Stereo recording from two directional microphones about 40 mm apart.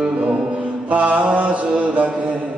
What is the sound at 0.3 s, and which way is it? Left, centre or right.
Mantra, right.